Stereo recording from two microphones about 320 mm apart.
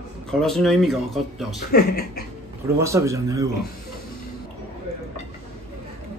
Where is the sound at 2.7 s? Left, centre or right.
Centre.